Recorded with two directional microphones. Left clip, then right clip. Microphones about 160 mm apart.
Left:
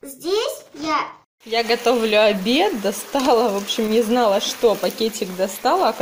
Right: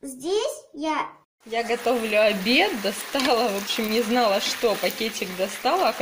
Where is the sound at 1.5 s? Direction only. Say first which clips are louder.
Left 5 dB; 5° left (ahead or behind).